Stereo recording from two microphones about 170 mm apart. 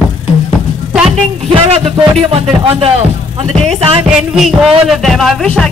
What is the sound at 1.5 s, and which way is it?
Music, 35° right (ahead or behind).